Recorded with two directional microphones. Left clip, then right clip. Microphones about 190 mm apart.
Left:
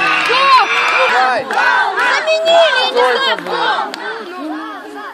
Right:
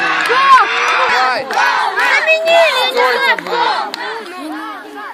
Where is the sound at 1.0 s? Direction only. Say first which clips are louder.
Left 1 dB; 40° left (ahead or behind).